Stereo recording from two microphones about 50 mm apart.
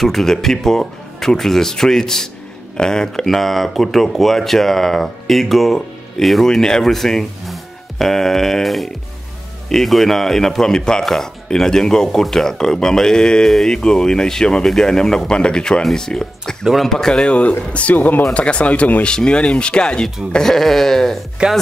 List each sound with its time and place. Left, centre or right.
0.0 s speech: centre
17.3 s speech: left
17.9 s speech: left
18.3 s speech: left
19.0 s speech: centre
20.3 s speech: centre
21.4 s speech: centre